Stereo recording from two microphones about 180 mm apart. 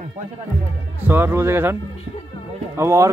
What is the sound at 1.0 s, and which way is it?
Speech, 10° right (ahead or behind).